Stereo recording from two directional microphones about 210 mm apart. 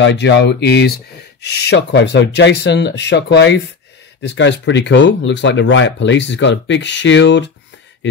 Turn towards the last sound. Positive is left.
turn(degrees=55)  # may be behind; listen again after turning